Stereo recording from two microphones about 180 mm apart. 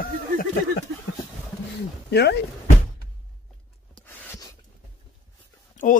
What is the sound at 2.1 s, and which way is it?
Speech, 65° left (ahead or behind).